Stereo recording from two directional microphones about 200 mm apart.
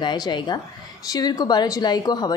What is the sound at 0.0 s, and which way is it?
A woman's voice, 20° left (ahead or behind).